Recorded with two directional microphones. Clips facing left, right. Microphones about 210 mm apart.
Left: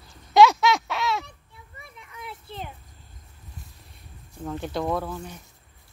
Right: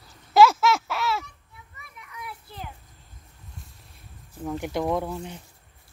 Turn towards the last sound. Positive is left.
turn(degrees=-20)  # may be behind; listen again after turning